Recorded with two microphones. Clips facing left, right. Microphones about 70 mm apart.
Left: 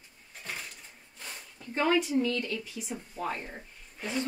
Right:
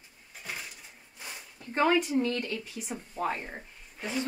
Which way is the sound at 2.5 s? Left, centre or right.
Right.